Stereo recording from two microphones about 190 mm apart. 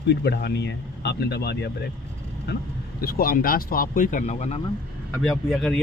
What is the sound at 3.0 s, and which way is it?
Speech, 50° left (ahead or behind).